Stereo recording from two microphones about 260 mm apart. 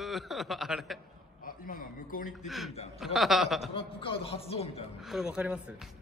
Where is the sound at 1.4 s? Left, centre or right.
Left.